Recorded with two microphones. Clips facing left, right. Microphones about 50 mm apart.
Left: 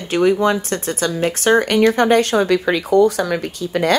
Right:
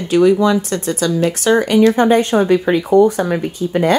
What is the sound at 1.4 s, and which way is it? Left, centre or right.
Speech, left.